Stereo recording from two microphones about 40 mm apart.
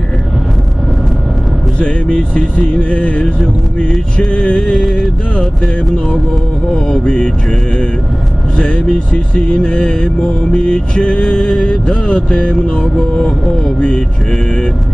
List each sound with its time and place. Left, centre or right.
2.7 s mantra: left
4.5 s mantra: left
5.4 s a sound: centre
7.1 s mantra: left
8.5 s mantra: left
13.1 s speech: centre
13.7 s mantra: left
14.3 s mantra: left